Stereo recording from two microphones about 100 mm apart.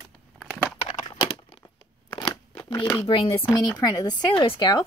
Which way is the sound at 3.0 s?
65° left (ahead or behind).